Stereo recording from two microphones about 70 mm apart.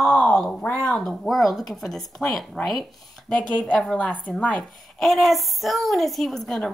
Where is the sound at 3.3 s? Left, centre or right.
Centre.